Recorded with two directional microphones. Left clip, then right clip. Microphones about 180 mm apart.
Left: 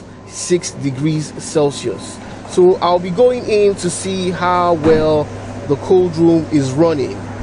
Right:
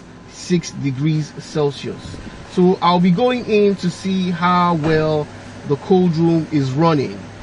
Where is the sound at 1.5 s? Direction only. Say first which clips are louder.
Left 4 dB; 35° left (ahead or behind).